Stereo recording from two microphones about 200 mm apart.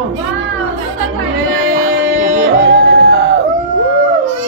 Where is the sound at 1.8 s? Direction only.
90° right.